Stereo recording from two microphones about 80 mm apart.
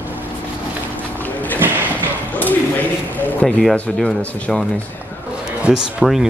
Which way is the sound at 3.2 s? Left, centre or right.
Left.